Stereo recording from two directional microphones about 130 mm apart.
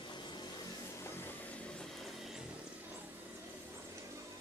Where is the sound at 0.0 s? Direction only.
35° left (ahead or behind).